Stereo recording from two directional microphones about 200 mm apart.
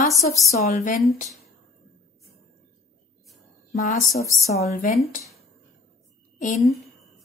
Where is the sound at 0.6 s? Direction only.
40° left (ahead or behind).